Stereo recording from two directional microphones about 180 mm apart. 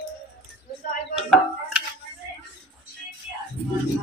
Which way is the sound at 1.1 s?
5° right (ahead or behind).